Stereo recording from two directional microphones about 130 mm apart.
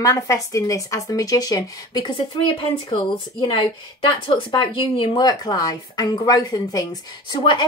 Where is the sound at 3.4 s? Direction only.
40° left (ahead or behind).